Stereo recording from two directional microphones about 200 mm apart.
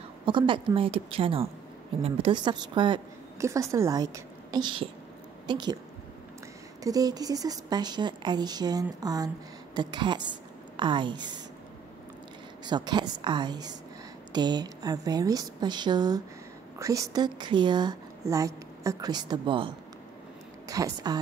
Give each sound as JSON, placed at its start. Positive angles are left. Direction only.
{"t": 0.2, "sound": "a woman's voice", "side_deg": -25}
{"t": 6.8, "sound": "a woman's voice", "side_deg": -20}
{"t": 12.6, "sound": "a woman's voice", "side_deg": -20}